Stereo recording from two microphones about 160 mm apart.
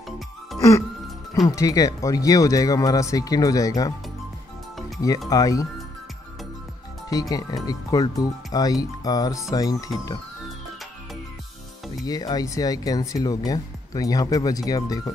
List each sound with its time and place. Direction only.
1.5 s speech: 20° left (ahead or behind)
4.7 s music: centre (ahead or behind)
5.3 s speech: 20° left (ahead or behind)
7.1 s speech: 20° left (ahead or behind)
12.0 s speech: 25° left (ahead or behind)